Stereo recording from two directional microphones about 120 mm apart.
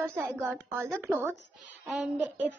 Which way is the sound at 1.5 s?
Centre (ahead or behind).